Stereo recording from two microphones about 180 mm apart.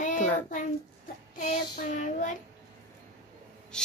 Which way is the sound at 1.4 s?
45° left (ahead or behind).